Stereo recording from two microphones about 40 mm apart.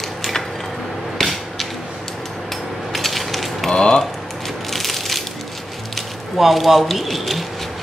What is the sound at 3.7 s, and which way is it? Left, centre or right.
Speech, left.